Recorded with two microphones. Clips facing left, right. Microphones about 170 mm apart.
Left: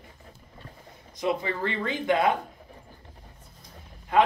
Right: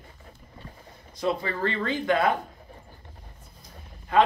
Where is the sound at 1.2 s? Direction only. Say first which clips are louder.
Right 1 dB; 20° left (ahead or behind).